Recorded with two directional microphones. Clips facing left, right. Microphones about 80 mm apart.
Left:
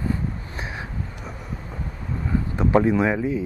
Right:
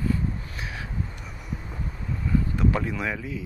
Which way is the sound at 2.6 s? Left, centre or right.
Left.